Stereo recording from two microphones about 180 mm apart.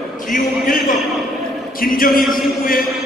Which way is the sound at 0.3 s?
50° left (ahead or behind).